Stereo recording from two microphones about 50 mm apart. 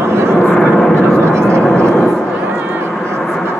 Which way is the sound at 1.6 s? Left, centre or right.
Left.